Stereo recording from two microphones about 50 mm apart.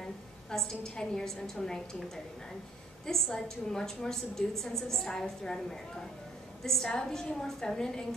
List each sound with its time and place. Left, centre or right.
0.5 s a woman's voice: centre
3.1 s a woman's voice: centre